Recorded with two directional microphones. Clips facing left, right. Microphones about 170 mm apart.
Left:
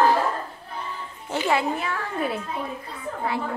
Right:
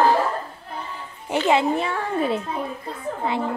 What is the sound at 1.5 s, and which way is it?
A child's voice, 25° right (ahead or behind).